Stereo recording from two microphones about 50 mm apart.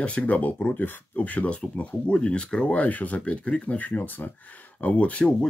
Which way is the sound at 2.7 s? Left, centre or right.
Left.